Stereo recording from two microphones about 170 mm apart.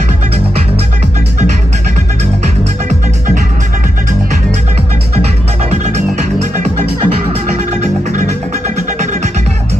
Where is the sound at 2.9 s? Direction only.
45° right (ahead or behind).